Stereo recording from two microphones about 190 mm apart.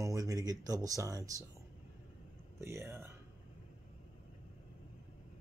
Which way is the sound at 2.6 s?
15° right (ahead or behind).